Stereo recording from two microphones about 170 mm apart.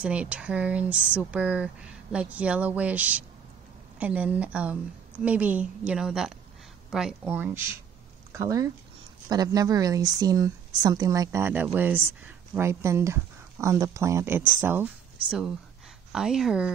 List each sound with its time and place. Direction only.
0.0 s speech: 5° right (ahead or behind)